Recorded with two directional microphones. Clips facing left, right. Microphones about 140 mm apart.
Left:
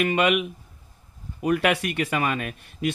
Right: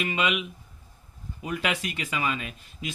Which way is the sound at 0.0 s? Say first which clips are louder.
Left 6 dB; 55° left (ahead or behind).